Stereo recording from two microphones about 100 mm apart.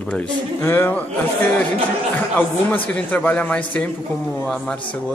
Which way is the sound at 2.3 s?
15° left (ahead or behind).